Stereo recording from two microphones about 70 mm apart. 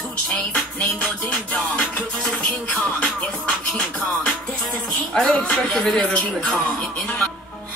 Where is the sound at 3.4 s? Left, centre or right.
Centre.